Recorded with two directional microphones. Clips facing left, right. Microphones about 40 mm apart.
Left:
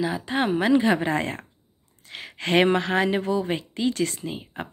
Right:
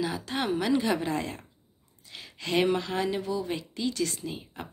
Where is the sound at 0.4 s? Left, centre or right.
Left.